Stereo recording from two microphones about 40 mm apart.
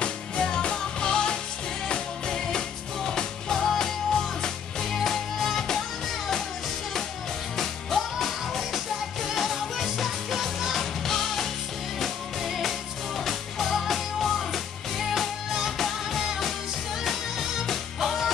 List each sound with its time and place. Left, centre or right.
0.0 s music: left
5.0 s music: centre
7.5 s music: centre
12.4 s music: centre